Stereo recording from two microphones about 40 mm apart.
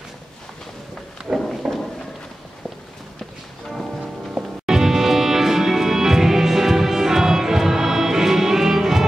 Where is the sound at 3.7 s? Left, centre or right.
Centre.